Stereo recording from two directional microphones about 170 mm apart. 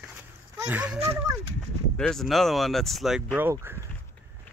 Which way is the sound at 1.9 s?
5° left (ahead or behind).